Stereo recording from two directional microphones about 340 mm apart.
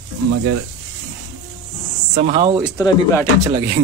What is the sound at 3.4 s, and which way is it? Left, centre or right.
Speech, centre.